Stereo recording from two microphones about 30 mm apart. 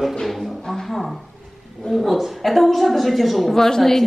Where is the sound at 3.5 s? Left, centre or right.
Centre.